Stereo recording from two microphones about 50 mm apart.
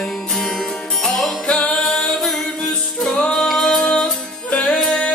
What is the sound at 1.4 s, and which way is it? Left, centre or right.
Music, centre.